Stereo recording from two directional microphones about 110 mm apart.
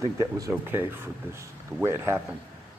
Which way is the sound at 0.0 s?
30° right (ahead or behind).